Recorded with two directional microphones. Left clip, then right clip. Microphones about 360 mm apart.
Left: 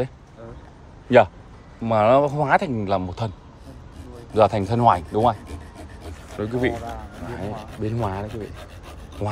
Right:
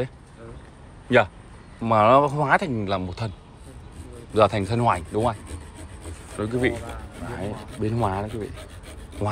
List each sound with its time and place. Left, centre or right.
1.8 s a man's voice: centre
4.3 s a man's voice: centre
6.3 s a man's voice: centre